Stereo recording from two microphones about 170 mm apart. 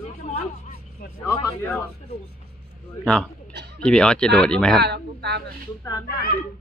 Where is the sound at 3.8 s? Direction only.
5° left (ahead or behind).